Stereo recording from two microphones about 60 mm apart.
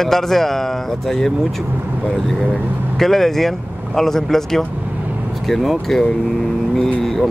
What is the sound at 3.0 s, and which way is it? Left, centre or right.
Speech, centre.